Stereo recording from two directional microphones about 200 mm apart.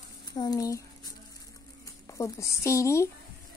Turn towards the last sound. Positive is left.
turn(degrees=15)  # may be behind; listen again after turning